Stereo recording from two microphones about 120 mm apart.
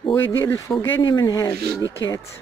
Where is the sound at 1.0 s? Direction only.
35° left (ahead or behind).